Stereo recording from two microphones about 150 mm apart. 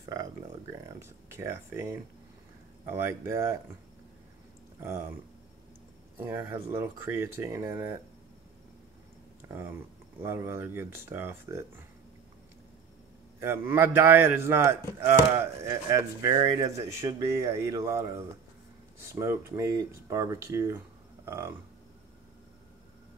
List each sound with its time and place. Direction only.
0.1 s a man's voice: 20° right (ahead or behind)
4.7 s speech: 15° right (ahead or behind)
6.1 s speech: 15° right (ahead or behind)
10.2 s speech: 15° right (ahead or behind)
13.4 s a man's voice: 15° right (ahead or behind)
19.0 s a man's voice: 20° right (ahead or behind)